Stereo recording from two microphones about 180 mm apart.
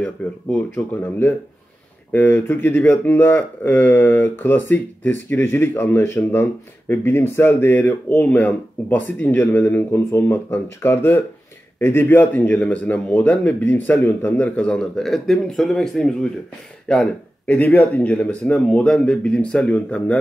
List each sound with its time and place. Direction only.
0.2 s a man's voice: 5° left (ahead or behind)